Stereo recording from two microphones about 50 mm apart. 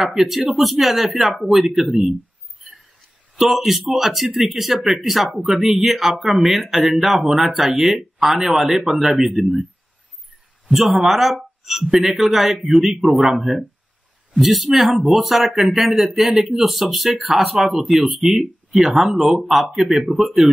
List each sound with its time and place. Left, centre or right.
0.0 s speech: centre
3.3 s speech: centre
10.7 s speech: centre